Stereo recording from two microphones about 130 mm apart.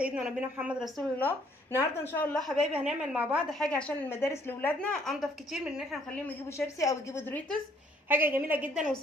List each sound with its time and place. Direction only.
0.0 s a woman's voice: 10° right (ahead or behind)
1.1 s speech: 15° left (ahead or behind)
2.3 s a woman's voice: centre (ahead or behind)
6.0 s speech: 10° left (ahead or behind)
6.5 s a woman's voice: 25° left (ahead or behind)
8.1 s a woman's voice: 15° right (ahead or behind)